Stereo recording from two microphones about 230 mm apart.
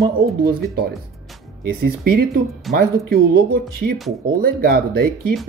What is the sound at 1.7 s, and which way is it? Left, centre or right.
Speech, right.